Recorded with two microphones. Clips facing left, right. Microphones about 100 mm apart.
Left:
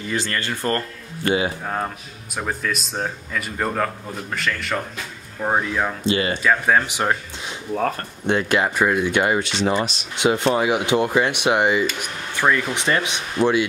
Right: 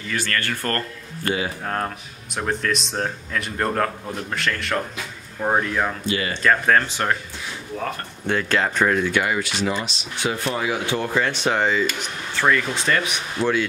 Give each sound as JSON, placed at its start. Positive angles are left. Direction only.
{"t": 0.1, "sound": "speech", "side_deg": 20}
{"t": 2.3, "sound": "speech", "side_deg": 5}
{"t": 6.0, "sound": "speech", "side_deg": 25}
{"t": 6.4, "sound": "speech", "side_deg": 10}
{"t": 8.3, "sound": "speech", "side_deg": 20}
{"t": 9.1, "sound": "speech", "side_deg": 25}